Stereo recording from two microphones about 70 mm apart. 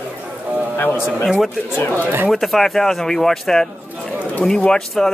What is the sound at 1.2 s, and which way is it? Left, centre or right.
Speech, centre.